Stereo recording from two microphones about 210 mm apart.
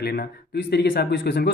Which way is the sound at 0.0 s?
50° left (ahead or behind).